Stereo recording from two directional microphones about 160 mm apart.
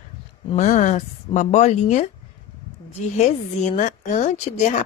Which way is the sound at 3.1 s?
45° left (ahead or behind).